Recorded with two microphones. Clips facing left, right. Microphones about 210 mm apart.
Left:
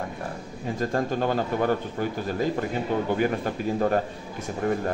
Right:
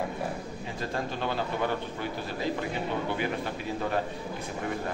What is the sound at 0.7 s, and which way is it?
Speech, 45° left (ahead or behind).